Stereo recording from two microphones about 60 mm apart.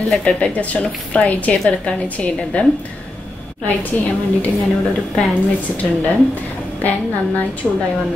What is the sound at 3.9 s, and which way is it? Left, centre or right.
Speech, left.